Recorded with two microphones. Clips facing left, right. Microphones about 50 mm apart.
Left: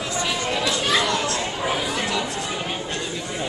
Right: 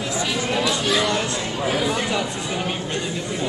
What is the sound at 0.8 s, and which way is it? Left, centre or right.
Chatter, centre.